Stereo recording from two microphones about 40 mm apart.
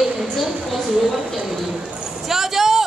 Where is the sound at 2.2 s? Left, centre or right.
Centre.